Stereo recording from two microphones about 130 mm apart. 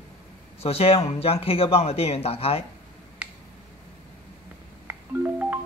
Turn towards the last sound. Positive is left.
turn(degrees=-15)  # may be behind; listen again after turning